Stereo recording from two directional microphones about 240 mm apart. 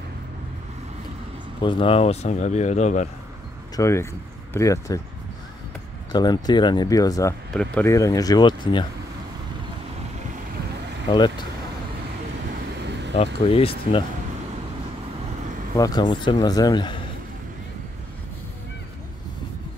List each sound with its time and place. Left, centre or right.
1.6 s speech: left
3.7 s speech: centre
6.1 s speech: centre
11.1 s speech: centre
13.1 s speech: left
15.7 s speech: centre